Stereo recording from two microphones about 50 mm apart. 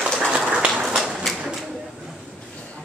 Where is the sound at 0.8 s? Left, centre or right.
Centre.